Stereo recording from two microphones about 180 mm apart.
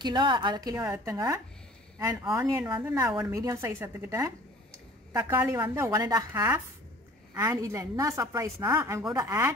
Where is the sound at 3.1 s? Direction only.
5° right (ahead or behind).